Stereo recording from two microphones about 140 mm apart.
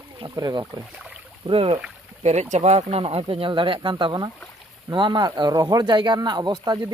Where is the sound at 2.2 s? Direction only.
55° right (ahead or behind).